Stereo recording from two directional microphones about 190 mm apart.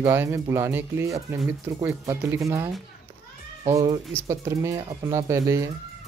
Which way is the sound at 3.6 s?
20° right (ahead or behind).